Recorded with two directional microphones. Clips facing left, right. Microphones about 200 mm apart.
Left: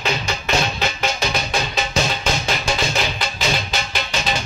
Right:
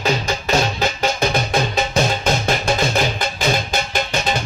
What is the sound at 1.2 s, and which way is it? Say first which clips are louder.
Music: right 7 dB; 50° right (ahead or behind).